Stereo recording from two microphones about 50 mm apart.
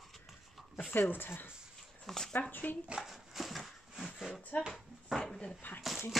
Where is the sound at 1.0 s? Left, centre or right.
Left.